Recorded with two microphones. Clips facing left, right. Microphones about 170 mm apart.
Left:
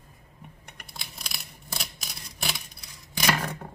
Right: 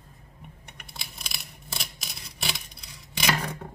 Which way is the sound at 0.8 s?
Centre (ahead or behind).